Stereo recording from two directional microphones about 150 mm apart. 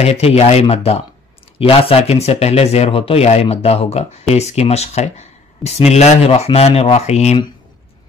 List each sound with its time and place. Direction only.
0.0 s speech: 45° left (ahead or behind)